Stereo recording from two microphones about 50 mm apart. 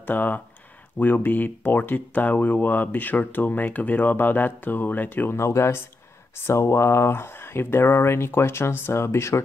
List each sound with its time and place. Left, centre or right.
0.0 s speech: left
5.3 s speech: left